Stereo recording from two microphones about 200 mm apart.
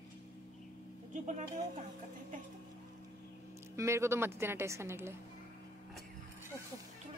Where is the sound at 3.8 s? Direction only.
15° right (ahead or behind).